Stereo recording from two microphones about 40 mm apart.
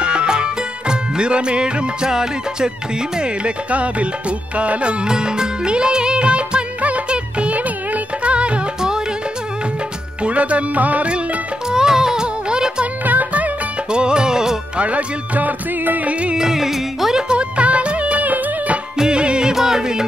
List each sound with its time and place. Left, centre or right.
0.0 s music: right
3.2 s music: right
5.0 s music: centre
10.2 s music: right
11.7 s music: centre
13.0 s music: right
13.8 s music: right
14.8 s music: right
16.1 s music: right
16.3 s music: centre
17.3 s music: right
18.9 s music: right
19.5 s music: centre